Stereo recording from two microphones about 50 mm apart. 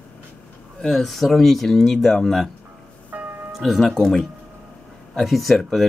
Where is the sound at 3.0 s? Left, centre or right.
Right.